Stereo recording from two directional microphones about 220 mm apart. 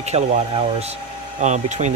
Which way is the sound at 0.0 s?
30° right (ahead or behind).